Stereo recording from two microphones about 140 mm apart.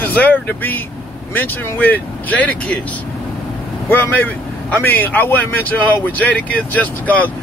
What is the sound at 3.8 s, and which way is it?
Speech, 15° left (ahead or behind).